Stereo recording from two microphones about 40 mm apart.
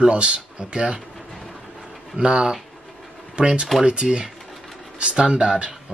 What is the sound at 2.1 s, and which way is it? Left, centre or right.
Speech, right.